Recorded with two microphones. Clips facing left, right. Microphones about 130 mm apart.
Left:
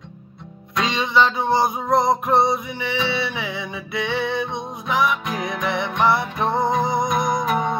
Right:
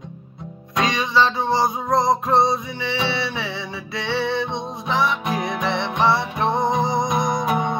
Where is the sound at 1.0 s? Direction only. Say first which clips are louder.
Left 2 dB; 20° left (ahead or behind).